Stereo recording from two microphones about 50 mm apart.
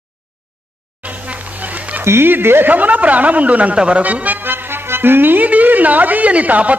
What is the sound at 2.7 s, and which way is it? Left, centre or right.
A woman's voice, right.